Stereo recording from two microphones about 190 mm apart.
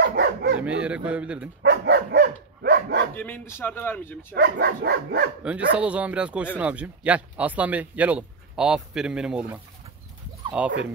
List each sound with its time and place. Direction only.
0.0 s dog: 60° right (ahead or behind)
0.6 s speech: 5° right (ahead or behind)
1.6 s dog: 60° right (ahead or behind)
3.2 s speech: 10° left (ahead or behind)
4.4 s dog: 60° right (ahead or behind)
5.4 s speech: 5° right (ahead or behind)